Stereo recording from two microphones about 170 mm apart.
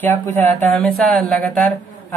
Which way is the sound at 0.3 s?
10° left (ahead or behind).